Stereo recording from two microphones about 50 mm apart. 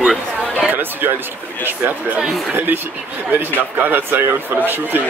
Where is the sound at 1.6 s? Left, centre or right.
Right.